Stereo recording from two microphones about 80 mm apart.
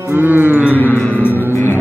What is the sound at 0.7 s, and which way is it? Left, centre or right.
Music, left.